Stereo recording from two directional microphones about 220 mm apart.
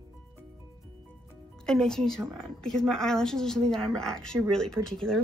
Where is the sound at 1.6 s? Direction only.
5° left (ahead or behind).